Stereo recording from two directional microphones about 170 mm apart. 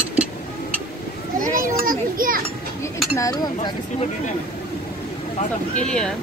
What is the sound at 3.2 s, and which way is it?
Speech, 20° left (ahead or behind).